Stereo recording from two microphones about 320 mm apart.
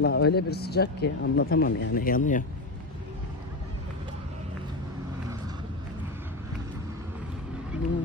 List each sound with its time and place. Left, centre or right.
0.0 s speech: left